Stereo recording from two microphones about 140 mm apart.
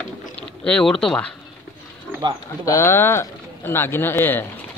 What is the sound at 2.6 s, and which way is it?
Speech, 20° left (ahead or behind).